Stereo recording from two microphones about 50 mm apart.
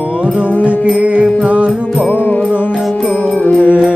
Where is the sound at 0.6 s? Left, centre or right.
Right.